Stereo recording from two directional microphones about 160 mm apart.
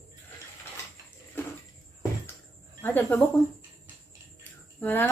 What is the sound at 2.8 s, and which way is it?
Speech, 10° left (ahead or behind).